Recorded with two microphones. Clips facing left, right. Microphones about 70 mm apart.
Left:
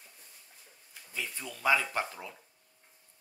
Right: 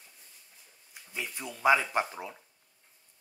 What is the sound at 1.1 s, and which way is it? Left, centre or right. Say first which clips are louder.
Speech: right 1 dB; centre.